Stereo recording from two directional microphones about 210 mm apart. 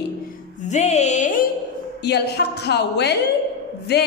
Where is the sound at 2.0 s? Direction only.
50° left (ahead or behind).